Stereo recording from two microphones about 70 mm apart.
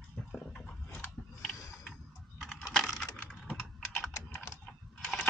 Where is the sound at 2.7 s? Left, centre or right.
Centre.